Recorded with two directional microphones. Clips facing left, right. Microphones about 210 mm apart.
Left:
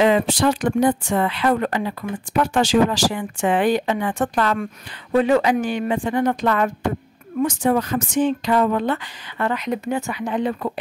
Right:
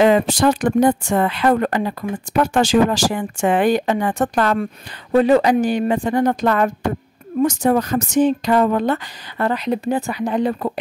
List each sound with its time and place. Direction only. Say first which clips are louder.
0.0 s speech: right 3 dB; 45° right (ahead or behind)